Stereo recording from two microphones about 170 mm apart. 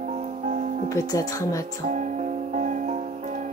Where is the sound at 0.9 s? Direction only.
20° left (ahead or behind).